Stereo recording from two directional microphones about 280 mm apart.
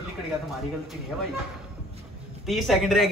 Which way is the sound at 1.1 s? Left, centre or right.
Centre.